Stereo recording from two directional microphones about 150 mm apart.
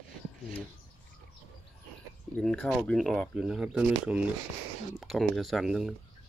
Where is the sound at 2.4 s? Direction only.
Centre (ahead or behind).